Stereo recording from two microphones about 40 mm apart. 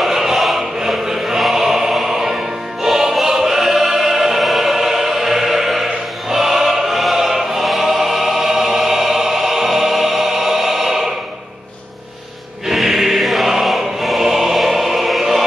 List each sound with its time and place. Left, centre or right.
0.0 s choir: centre
12.6 s choir: centre